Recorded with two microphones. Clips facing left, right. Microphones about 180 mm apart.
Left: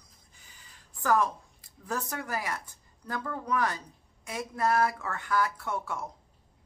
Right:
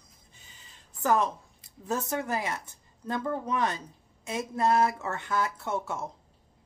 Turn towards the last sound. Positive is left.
turn(degrees=-25)  # may be behind; listen again after turning